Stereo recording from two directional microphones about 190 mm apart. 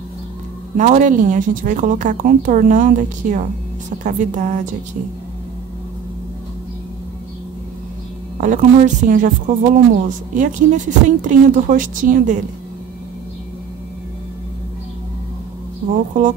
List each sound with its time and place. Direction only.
0.7 s a woman's voice: 40° right (ahead or behind)
8.4 s a woman's voice: 45° right (ahead or behind)
15.9 s a woman's voice: 45° right (ahead or behind)